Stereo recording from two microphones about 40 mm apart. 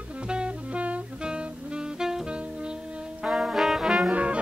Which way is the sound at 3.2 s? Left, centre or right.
Right.